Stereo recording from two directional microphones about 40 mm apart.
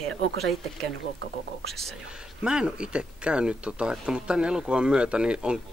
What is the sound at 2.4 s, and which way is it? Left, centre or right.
Speech, right.